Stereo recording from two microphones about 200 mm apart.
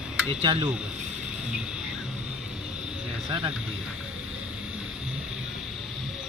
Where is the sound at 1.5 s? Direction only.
5° right (ahead or behind).